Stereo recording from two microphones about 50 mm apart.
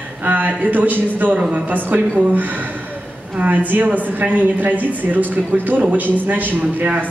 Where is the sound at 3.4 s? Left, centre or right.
Right.